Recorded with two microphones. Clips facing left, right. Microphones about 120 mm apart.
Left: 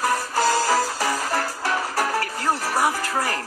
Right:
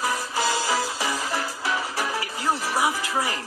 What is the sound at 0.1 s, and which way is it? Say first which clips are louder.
Music: left 4 dB; 40° left (ahead or behind).